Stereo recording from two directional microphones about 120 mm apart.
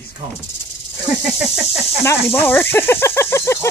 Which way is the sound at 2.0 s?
20° left (ahead or behind).